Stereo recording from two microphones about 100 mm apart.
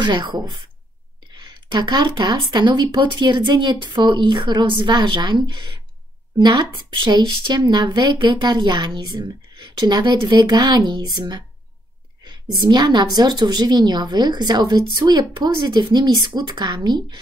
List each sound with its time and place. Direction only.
0.0 s a woman's voice: 50° right (ahead or behind)